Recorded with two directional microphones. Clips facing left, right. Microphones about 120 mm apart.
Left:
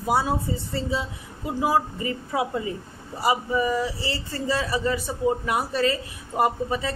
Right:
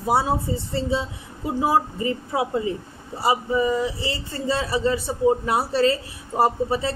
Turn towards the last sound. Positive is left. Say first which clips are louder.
# right 3 dB
turn(degrees=-30)  # may be behind; listen again after turning